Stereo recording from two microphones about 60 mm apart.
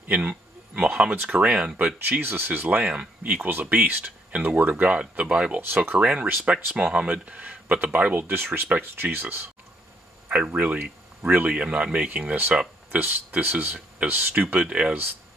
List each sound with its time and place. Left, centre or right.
0.1 s a sound: right
1.1 s speech: right
3.4 s speech: right
8.3 s speech: right
10.2 s speech: right